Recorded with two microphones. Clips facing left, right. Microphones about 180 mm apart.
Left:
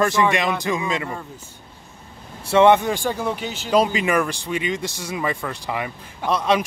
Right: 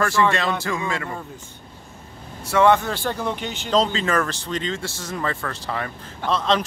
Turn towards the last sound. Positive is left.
turn(degrees=10)  # may be behind; listen again after turning